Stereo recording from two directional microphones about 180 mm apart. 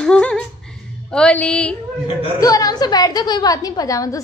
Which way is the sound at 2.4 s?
20° left (ahead or behind).